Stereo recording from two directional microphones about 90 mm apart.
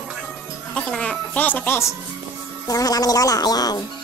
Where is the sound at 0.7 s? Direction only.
10° left (ahead or behind); by 2.0 s 30° left (ahead or behind).